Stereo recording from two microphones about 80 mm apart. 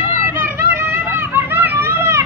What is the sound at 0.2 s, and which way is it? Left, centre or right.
Children playing, right.